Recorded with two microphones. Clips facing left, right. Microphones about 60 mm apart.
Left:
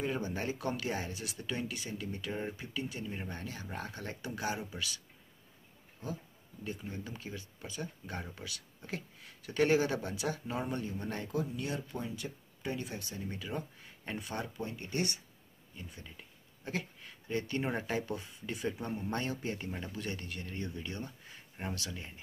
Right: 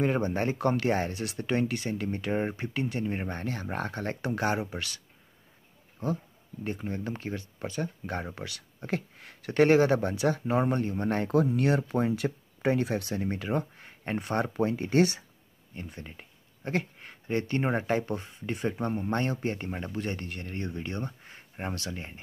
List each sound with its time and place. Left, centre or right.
0.0 s speech: right
6.6 s speech: right
11.4 s speech: right
15.7 s speech: right